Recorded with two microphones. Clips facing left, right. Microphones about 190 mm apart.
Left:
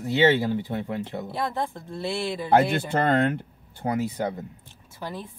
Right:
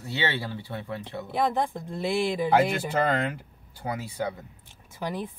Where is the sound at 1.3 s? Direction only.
15° right (ahead or behind).